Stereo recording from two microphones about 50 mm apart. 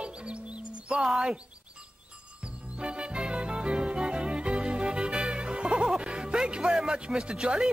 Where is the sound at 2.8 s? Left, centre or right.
Centre.